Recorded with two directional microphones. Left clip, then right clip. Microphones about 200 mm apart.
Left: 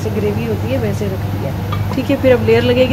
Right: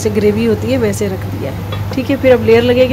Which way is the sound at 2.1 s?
15° right (ahead or behind).